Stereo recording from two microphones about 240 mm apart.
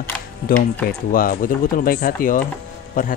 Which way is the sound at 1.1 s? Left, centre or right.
Left.